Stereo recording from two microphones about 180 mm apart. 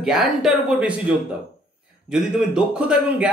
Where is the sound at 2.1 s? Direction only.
Centre (ahead or behind).